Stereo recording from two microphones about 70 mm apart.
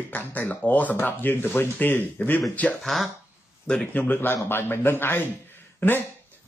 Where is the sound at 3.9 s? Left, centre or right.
Left.